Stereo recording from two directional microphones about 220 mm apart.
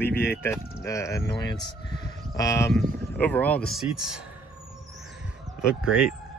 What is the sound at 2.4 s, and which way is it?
Speech, 15° left (ahead or behind).